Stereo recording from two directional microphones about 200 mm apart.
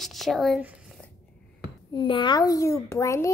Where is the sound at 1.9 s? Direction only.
20° left (ahead or behind).